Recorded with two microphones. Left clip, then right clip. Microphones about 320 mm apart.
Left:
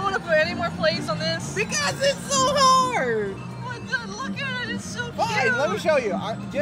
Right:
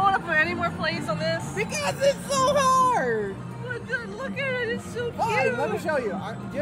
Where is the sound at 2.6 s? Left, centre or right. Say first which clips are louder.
Left 4 dB; left.